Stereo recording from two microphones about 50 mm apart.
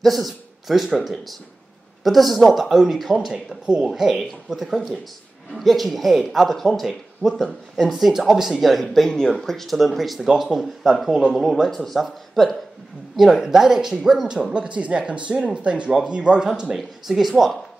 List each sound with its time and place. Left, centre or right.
0.0 s speech: centre
11.1 s speech: centre
11.3 s speech: centre
14.7 s speech: right
16.7 s speech: centre